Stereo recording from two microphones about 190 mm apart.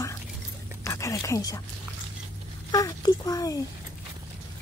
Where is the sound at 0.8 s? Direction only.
15° left (ahead or behind).